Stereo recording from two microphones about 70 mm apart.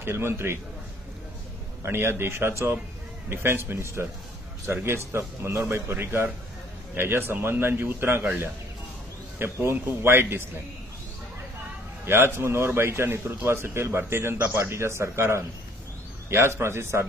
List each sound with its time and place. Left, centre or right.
0.0 s a man's voice: right
1.8 s a man's voice: right
9.4 s a man's voice: right
12.1 s a man's voice: right